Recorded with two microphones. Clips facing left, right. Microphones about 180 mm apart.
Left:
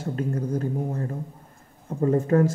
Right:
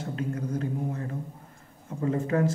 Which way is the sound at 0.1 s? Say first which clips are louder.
Left 4 dB; 40° left (ahead or behind).